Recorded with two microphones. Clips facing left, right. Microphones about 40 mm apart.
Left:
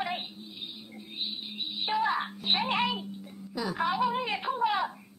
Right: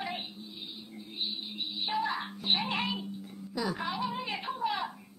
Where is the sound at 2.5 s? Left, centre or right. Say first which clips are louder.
Left 3 dB; left.